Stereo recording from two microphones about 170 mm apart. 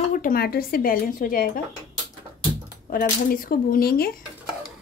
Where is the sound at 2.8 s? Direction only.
55° left (ahead or behind).